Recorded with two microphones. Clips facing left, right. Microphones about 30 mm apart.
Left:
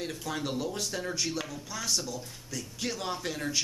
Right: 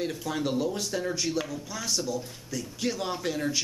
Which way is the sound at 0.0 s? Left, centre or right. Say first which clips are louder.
Right 4 dB; centre.